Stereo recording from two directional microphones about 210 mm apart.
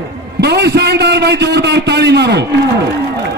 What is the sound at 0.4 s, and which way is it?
A man's voice, 50° right (ahead or behind).